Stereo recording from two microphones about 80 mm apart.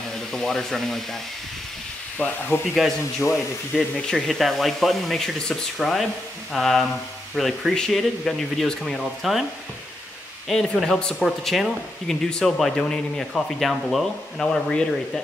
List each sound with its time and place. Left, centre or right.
0.3 s speech: centre
2.1 s speech: centre
2.7 s speech: centre
10.5 s speech: centre